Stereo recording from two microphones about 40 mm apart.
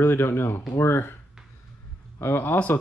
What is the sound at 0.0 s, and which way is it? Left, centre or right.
Speech, left.